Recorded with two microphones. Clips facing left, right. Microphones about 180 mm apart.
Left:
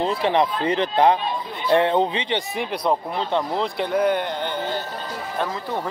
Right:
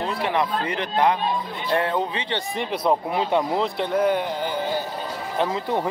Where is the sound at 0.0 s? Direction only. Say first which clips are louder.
Left 4 dB; 30° left (ahead or behind).